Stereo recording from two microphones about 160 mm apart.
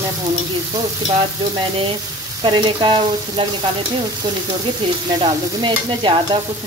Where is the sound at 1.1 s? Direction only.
35° right (ahead or behind).